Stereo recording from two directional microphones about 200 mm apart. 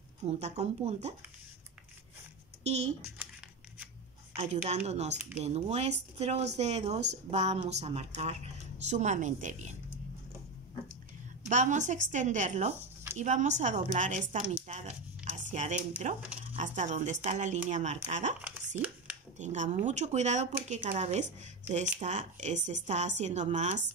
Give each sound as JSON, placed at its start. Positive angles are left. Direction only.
{"t": 0.2, "sound": "speech", "side_deg": -35}
{"t": 2.6, "sound": "speech", "side_deg": -35}
{"t": 4.6, "sound": "speech", "side_deg": -30}
{"t": 11.4, "sound": "a woman's voice", "side_deg": -35}